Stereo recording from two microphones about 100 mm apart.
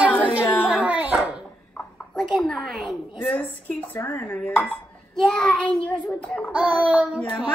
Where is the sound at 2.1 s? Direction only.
10° left (ahead or behind).